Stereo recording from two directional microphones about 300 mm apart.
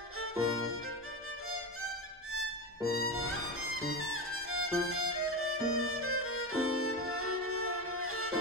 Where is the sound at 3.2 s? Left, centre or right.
Right.